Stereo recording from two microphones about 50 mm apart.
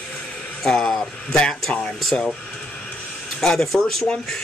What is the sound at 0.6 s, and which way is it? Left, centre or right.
Speech, centre.